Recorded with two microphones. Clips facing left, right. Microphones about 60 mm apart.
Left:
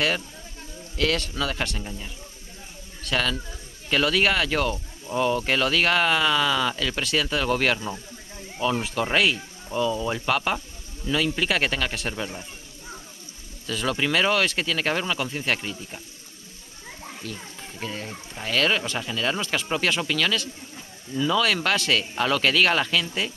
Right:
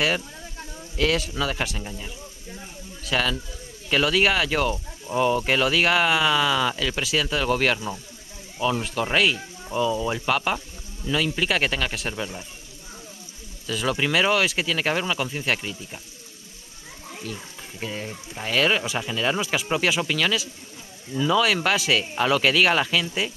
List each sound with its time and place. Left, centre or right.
0.9 s speech: centre
13.7 s speech: centre
17.2 s speech: centre